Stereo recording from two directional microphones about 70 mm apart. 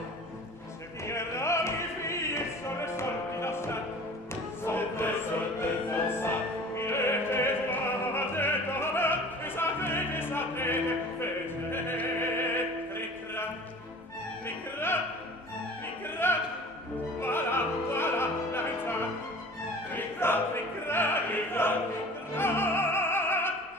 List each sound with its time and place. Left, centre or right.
1.0 s music: left
5.6 s opera: left
12.9 s music: left
16.2 s music: left
17.2 s opera: left
19.9 s music: left